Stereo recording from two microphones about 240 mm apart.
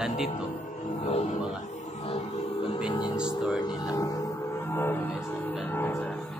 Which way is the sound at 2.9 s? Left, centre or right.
Centre.